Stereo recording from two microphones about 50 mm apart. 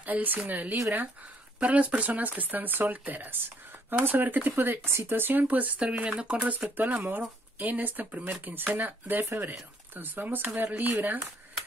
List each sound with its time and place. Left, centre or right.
0.0 s speech: right
1.6 s speech: right
5.4 s speech: right
5.8 s speech: right
6.8 s speech: right